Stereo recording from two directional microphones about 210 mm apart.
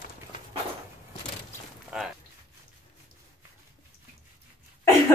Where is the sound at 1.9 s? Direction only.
5° right (ahead or behind).